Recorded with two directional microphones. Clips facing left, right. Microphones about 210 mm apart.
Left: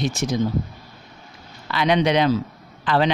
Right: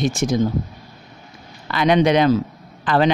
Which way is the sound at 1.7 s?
50° right (ahead or behind).